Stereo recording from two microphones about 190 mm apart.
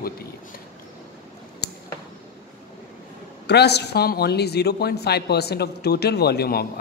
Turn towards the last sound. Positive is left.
turn(degrees=55)  # may be behind; listen again after turning